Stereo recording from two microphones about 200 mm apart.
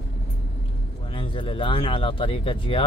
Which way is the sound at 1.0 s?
25° left (ahead or behind).